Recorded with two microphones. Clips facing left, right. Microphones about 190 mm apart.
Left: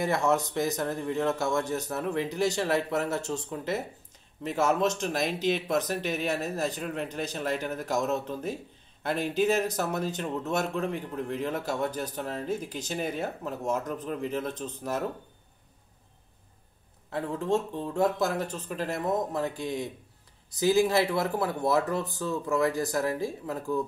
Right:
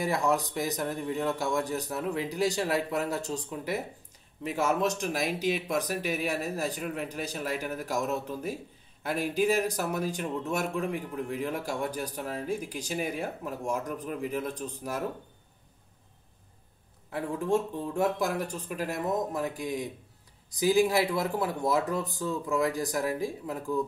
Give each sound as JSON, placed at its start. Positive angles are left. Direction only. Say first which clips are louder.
{"t": 0.1, "sound": "speech", "louder": "left 2 dB", "side_deg": -15}
{"t": 4.4, "sound": "speech", "louder": "left 2 dB", "side_deg": -10}
{"t": 17.9, "sound": "speech", "louder": "left 2 dB", "side_deg": -10}